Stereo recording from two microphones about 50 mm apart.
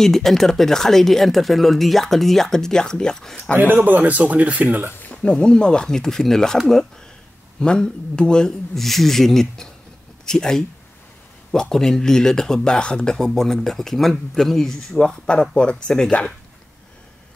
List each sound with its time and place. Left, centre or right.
0.0 s speech: centre
3.5 s speech: right
5.0 s a sound: left
5.3 s speech: centre
7.6 s speech: centre
8.7 s speech: centre